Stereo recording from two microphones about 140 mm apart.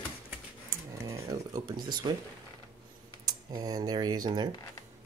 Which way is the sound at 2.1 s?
35° right (ahead or behind).